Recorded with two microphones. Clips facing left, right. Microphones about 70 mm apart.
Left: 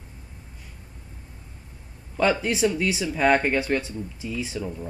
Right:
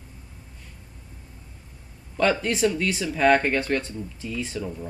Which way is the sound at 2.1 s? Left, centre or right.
Centre.